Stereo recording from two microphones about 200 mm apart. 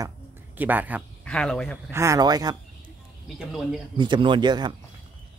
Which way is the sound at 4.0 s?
25° right (ahead or behind).